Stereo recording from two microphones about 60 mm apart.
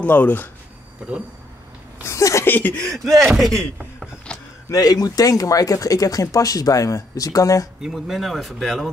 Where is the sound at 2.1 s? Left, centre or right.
Left.